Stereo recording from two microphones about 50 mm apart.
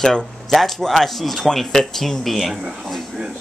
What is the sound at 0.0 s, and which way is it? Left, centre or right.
Speech, centre.